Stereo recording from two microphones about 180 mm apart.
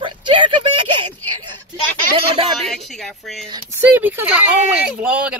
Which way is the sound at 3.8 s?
10° right (ahead or behind).